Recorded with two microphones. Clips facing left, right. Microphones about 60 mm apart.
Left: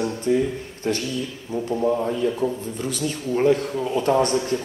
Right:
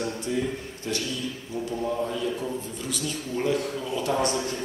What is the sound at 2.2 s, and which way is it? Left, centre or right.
A man's voice, left.